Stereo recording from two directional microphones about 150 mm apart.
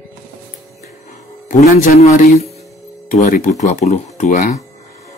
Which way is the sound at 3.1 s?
60° left (ahead or behind).